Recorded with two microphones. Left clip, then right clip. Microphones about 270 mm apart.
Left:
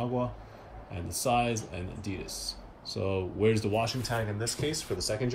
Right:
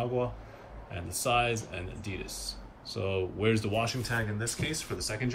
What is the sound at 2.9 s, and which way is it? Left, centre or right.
Speech, centre.